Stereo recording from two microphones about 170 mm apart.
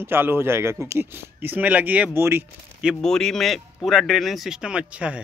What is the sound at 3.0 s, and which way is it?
A man's voice, 5° left (ahead or behind).